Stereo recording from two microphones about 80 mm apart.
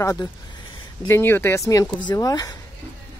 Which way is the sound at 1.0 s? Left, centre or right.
Left.